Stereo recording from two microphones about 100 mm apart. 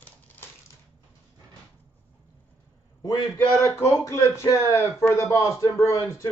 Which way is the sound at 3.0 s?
35° left (ahead or behind).